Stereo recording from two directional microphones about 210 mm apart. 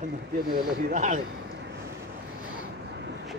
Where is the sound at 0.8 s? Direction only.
35° right (ahead or behind).